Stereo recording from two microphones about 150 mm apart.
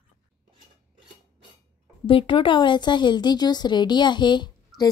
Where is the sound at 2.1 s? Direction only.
35° left (ahead or behind).